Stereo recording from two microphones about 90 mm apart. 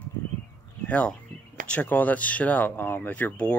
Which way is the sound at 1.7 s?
20° left (ahead or behind).